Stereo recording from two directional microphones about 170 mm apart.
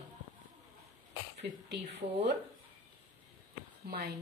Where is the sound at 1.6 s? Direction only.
80° right.